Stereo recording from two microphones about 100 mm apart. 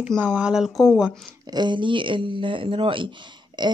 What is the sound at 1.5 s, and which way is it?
Speech, 50° right (ahead or behind).